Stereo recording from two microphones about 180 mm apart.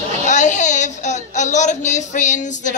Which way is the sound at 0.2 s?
40° left (ahead or behind).